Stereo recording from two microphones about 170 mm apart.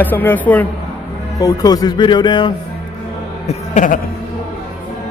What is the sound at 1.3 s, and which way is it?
Speech, 20° left (ahead or behind).